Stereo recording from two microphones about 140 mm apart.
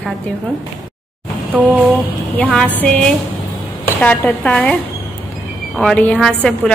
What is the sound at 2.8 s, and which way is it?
A woman's voice, 10° left (ahead or behind).